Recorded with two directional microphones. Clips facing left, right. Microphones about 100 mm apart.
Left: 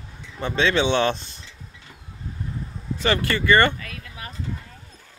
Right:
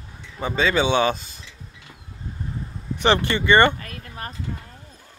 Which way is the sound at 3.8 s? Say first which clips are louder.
Right 2 dB; 45° right (ahead or behind).